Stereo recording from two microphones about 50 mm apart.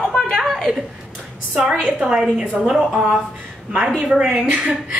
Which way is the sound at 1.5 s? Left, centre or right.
Right.